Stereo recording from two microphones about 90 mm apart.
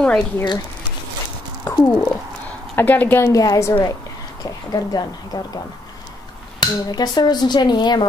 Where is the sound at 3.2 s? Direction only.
35° left (ahead or behind).